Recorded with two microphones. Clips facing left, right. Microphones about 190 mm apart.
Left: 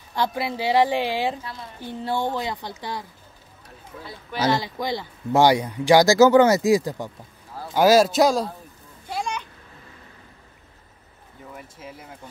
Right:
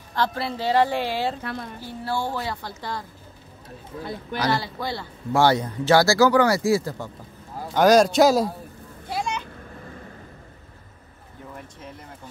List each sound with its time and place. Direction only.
0.1 s speech: 15° left (ahead or behind)
1.4 s a woman's voice: 60° right (ahead or behind)
1.8 s speech: 20° left (ahead or behind)
4.0 s speech: 50° right (ahead or behind)
4.4 s a man's voice: 20° left (ahead or behind); by 8.5 s 5° right (ahead or behind)
11.5 s speech: 5° left (ahead or behind)